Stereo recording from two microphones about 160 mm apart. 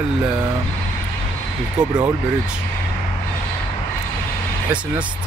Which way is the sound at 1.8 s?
5° right (ahead or behind).